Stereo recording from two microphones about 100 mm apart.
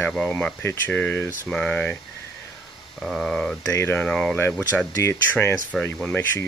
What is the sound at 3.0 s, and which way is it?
Speech, 5° left (ahead or behind).